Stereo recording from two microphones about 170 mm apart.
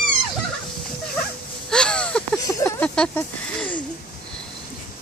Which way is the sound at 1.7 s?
5° left (ahead or behind).